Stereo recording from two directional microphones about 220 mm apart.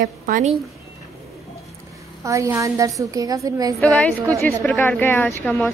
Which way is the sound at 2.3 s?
15° right (ahead or behind).